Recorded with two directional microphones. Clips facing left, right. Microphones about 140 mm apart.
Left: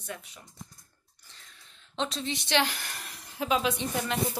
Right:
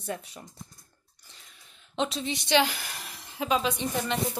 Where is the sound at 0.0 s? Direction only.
35° right (ahead or behind).